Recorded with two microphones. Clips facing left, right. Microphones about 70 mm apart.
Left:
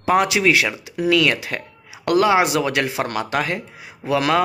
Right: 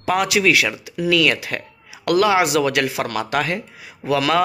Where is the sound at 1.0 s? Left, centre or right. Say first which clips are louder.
Even; centre.